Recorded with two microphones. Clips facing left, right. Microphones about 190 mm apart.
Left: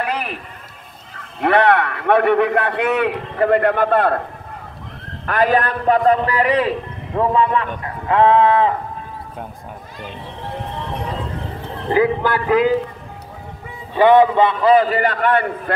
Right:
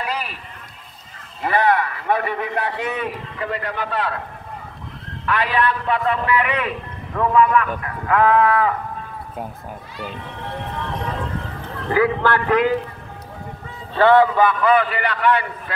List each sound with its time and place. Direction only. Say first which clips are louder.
0.0 s music: left 4 dB; 60° left (ahead or behind)
1.4 s a man's voice: left 4 dB; 65° left (ahead or behind)
5.2 s a man's voice: left 4 dB; 45° left (ahead or behind); by 8.7 s 25° left (ahead or behind)
11.7 s a man's voice: left 2 dB; 20° left (ahead or behind)
13.9 s a man's voice: left 2 dB; 15° left (ahead or behind); by 15.7 s 50° left (ahead or behind)